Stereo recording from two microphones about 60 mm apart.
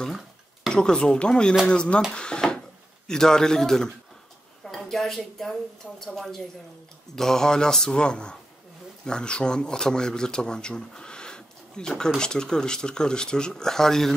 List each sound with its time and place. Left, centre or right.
0.7 s speech: centre
2.1 s drawer open or close: centre
3.1 s a woman's voice: centre